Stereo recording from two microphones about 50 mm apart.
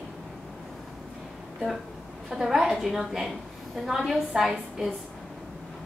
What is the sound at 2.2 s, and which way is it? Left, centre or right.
A woman's voice, centre.